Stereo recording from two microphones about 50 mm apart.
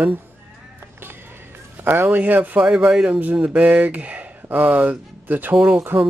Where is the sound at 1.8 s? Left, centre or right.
Right.